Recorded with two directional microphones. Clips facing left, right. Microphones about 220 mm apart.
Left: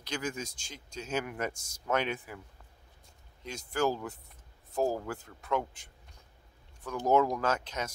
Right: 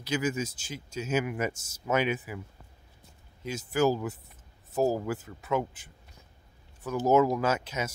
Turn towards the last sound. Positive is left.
turn(degrees=-5)  # may be behind; listen again after turning